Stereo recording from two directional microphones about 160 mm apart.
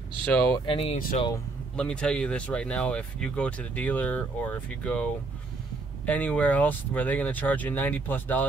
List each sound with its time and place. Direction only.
0.3 s speech: 10° left (ahead or behind)
0.7 s speech: 35° left (ahead or behind)
1.8 s speech: 5° left (ahead or behind)